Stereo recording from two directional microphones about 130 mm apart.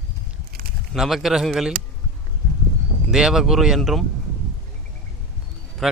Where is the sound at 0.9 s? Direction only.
Centre (ahead or behind).